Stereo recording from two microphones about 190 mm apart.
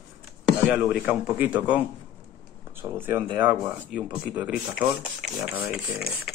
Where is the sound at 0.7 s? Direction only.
5° right (ahead or behind).